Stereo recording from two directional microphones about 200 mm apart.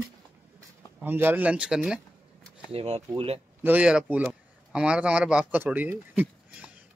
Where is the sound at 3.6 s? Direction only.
10° right (ahead or behind).